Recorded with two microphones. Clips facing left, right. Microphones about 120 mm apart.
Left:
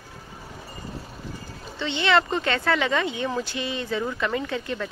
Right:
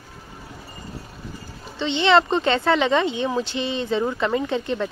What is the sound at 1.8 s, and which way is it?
Speech, 25° right (ahead or behind).